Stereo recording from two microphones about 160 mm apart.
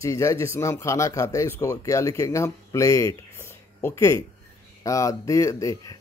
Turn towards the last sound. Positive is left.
turn(degrees=20)  # may be behind; listen again after turning